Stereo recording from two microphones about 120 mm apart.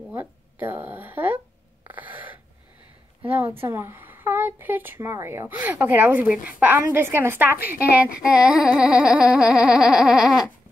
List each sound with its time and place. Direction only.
0.1 s speech: 15° right (ahead or behind)
1.9 s gasp: 15° right (ahead or behind)
3.2 s a woman's voice: 15° right (ahead or behind)
8.5 s speech: 5° right (ahead or behind)